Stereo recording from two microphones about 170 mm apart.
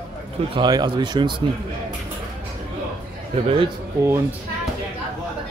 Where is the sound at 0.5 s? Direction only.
25° right (ahead or behind).